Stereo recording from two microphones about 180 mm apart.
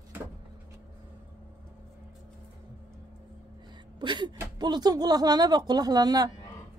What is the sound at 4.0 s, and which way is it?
A woman's voice, 25° right (ahead or behind).